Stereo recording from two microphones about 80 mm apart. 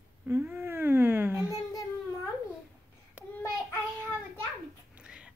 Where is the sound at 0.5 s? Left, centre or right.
Right.